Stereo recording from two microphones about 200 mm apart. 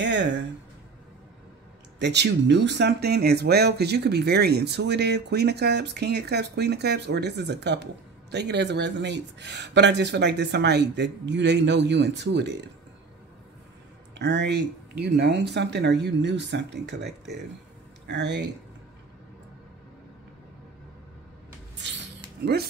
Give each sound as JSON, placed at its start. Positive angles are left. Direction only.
{"t": 0.0, "sound": "a sound", "side_deg": -65}
{"t": 2.0, "sound": "speech", "side_deg": -60}
{"t": 14.1, "sound": "speech", "side_deg": -60}